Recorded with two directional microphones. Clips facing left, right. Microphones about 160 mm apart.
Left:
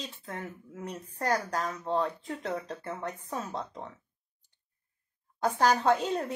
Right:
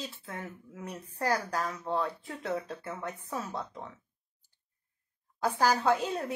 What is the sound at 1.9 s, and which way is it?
Speech, 20° left (ahead or behind).